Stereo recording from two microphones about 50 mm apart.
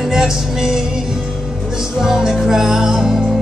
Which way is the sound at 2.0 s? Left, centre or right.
Centre.